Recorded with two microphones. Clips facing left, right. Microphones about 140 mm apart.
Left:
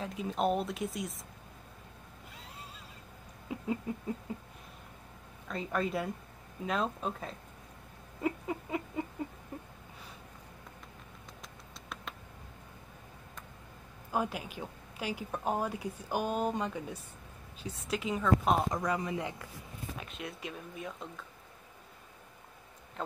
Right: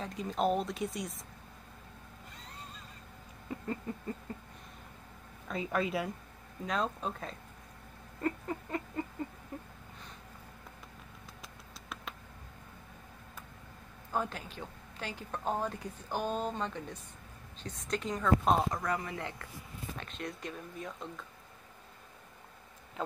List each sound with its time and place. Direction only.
0.0 s speech: 5° left (ahead or behind)
3.4 s a sound: 5° left (ahead or behind)
5.5 s speech: 5° right (ahead or behind)
8.2 s a sound: 5° left (ahead or behind)
11.4 s a sound: centre (ahead or behind)
14.1 s speech: 10° left (ahead or behind)
18.7 s speech: 15° left (ahead or behind)
20.0 s speech: 5° left (ahead or behind)
23.0 s speech: centre (ahead or behind)